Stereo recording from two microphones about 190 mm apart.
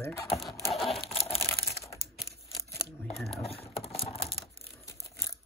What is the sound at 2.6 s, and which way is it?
Tearing, 15° left (ahead or behind).